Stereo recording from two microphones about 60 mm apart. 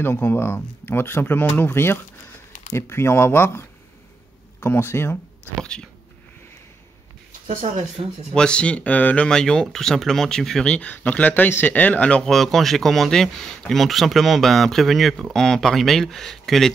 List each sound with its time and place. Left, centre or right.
0.0 s speech: left
5.6 s speech: centre
8.3 s speech: centre
9.3 s speech: centre
10.6 s speech: left
12.2 s speech: centre